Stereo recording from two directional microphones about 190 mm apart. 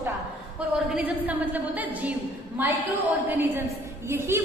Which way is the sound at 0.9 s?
10° right (ahead or behind).